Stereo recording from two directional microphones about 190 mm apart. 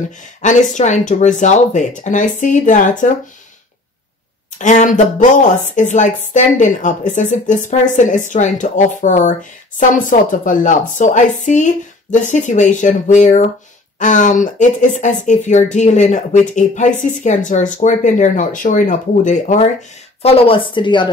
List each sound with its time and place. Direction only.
0.4 s speech: 40° left (ahead or behind)
4.6 s speech: 40° left (ahead or behind); by 21.1 s 25° left (ahead or behind)